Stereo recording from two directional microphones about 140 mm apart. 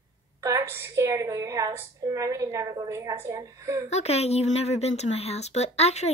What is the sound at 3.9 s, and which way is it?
Speech, 50° left (ahead or behind).